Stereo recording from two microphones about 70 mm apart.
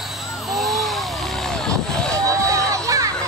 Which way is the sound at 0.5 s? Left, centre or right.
Centre.